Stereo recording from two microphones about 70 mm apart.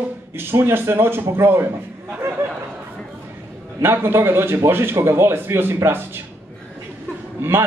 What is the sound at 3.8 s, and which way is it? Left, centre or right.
A man's voice, right.